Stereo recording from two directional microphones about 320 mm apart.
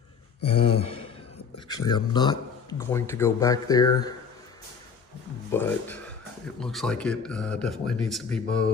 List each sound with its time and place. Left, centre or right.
0.4 s a sound: centre
1.9 s speech: centre
5.5 s speech: centre